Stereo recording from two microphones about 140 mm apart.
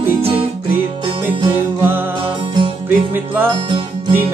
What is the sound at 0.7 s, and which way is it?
Music, 35° right (ahead or behind).